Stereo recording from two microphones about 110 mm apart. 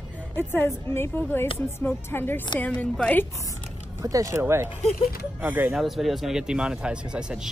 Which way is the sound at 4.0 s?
30° right (ahead or behind).